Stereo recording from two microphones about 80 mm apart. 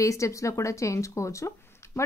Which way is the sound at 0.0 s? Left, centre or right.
Left.